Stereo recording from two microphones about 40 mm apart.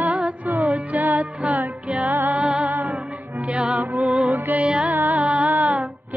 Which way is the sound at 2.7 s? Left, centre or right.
Right.